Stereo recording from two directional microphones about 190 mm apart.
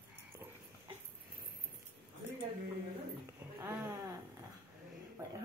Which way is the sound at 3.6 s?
10° right (ahead or behind).